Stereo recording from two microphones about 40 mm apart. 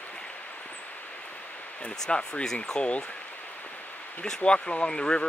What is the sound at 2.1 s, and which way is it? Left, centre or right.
Speech, left.